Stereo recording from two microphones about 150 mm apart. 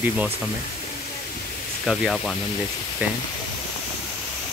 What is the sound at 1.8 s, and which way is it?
Speech, centre (ahead or behind).